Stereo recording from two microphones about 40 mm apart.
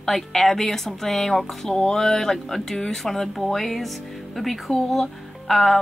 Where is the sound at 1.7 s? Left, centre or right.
Centre.